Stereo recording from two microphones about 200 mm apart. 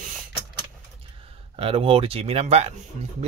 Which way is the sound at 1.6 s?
30° right (ahead or behind).